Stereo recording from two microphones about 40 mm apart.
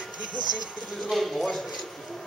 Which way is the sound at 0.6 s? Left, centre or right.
Centre.